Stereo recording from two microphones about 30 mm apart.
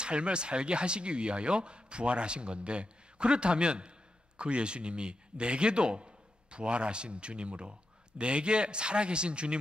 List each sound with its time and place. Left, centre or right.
0.0 s speech: right